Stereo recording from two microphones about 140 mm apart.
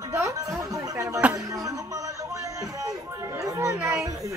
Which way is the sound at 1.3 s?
25° right (ahead or behind).